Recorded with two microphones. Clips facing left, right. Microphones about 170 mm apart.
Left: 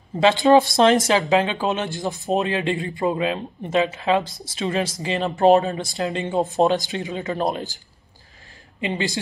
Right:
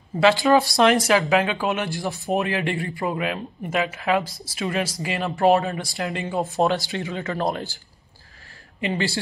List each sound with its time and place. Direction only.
0.2 s a man's voice: 20° left (ahead or behind)
8.8 s speech: 20° left (ahead or behind)